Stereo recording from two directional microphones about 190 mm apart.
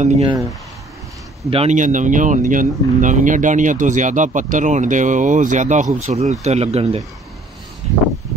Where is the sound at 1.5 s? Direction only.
35° right (ahead or behind).